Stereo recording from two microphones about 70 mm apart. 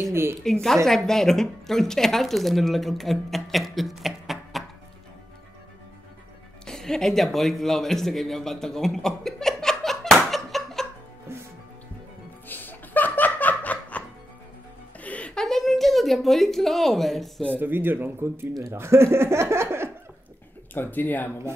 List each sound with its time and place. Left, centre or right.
0.0 s speech: right
0.4 s a woman's voice: centre
6.6 s a man's voice: centre
11.3 s music: right
12.4 s laughter: left
15.0 s music: centre
15.3 s a sound: centre
17.6 s speech: right
20.7 s speech: left